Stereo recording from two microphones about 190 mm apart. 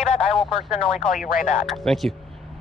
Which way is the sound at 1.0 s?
45° left (ahead or behind).